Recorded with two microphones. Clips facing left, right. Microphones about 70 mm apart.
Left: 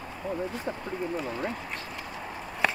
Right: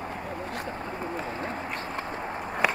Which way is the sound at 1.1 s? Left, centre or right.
Right.